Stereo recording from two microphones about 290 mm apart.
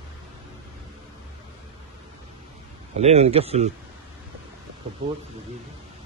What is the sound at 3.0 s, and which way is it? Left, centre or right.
Speech, right.